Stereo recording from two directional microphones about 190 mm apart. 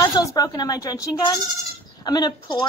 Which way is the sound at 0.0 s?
20° left (ahead or behind).